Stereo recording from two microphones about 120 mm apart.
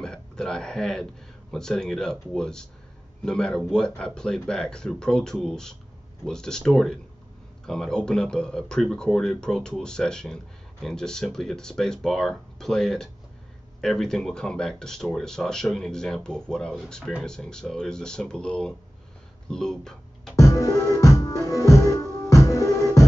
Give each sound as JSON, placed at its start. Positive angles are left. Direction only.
{"t": 0.0, "sound": "speech", "side_deg": 5}
{"t": 20.3, "sound": "music", "side_deg": 25}